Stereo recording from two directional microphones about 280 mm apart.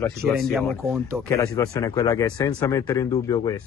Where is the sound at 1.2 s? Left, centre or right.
Centre.